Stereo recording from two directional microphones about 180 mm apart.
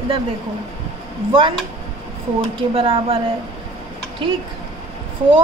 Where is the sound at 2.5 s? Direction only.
30° right (ahead or behind).